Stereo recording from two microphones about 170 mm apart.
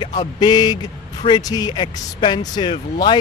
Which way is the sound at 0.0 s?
25° left (ahead or behind).